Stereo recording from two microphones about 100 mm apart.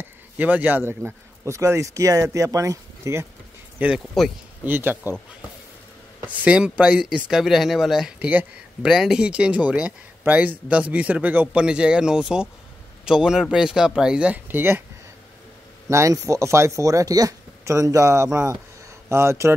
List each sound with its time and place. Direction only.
0.0 s a man's voice: 15° right (ahead or behind)
3.8 s speech: 15° right (ahead or behind)
4.2 s speech: centre (ahead or behind)
4.6 s speech: 20° right (ahead or behind)
6.3 s speech: 10° right (ahead or behind)
8.2 s speech: 15° right (ahead or behind)
8.8 s speech: 5° right (ahead or behind); by 14.8 s 20° right (ahead or behind)
15.9 s speech: 30° right (ahead or behind)